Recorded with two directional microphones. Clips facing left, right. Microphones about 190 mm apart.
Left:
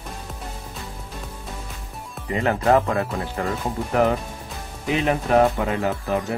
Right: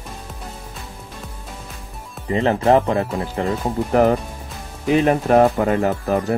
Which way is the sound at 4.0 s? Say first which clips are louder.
Right 4 dB; 40° right (ahead or behind).